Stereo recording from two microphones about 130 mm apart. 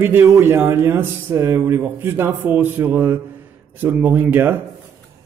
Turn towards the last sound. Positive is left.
turn(degrees=-15)  # may be behind; listen again after turning